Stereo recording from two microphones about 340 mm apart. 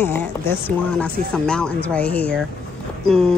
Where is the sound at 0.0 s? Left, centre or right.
Centre.